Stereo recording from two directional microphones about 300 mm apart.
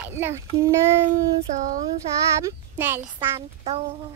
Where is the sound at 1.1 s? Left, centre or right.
Right.